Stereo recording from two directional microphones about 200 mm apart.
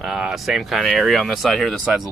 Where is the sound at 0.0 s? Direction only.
Centre (ahead or behind).